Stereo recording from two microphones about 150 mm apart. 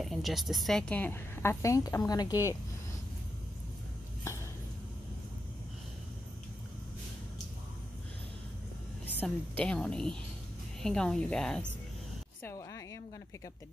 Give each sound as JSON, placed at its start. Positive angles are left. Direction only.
{"t": 0.0, "sound": "a woman's voice", "side_deg": 0}
{"t": 9.2, "sound": "a woman's voice", "side_deg": 5}
{"t": 12.4, "sound": "a sound", "side_deg": 20}